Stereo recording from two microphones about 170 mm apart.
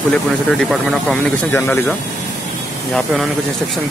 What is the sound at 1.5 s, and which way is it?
Speech, 15° left (ahead or behind).